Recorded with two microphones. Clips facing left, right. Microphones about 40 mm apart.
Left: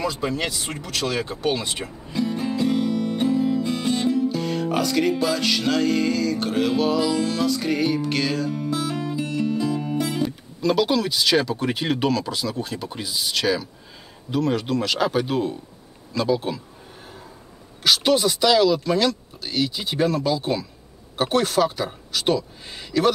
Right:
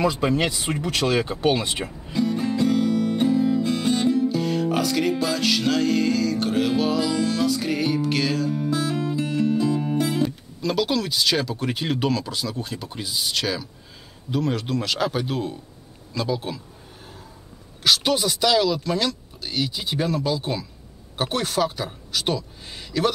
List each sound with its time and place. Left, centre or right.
0.0 s speech: right
0.3 s speech: centre
0.7 s speech: right
2.1 s music: centre
9.5 s speech: centre
14.3 s music: centre
17.8 s music: centre